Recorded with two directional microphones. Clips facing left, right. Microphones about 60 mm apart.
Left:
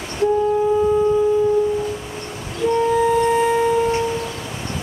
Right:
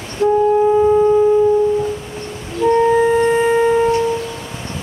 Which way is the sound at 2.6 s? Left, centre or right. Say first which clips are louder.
Right 4 dB; right.